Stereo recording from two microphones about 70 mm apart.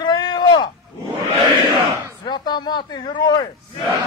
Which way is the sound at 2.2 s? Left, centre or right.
Left.